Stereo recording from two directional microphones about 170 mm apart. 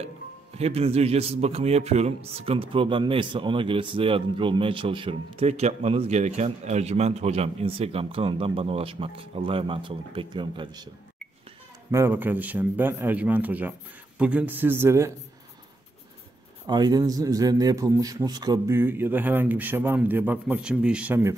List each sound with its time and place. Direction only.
0.6 s a man's voice: 35° right (ahead or behind)
11.9 s a man's voice: 15° right (ahead or behind)
16.6 s a man's voice: 25° right (ahead or behind)